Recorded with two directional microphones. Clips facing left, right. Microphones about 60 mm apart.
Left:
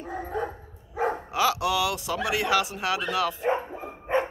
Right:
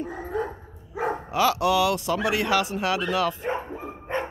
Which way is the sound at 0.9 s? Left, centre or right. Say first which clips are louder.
Right 1 dB; centre.